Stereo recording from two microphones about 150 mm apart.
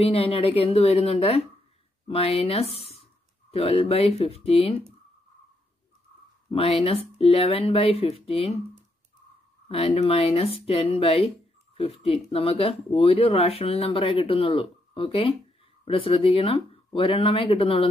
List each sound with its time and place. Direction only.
0.0 s speech: 40° left (ahead or behind)
6.5 s speech: 40° left (ahead or behind)
9.7 s speech: 40° left (ahead or behind)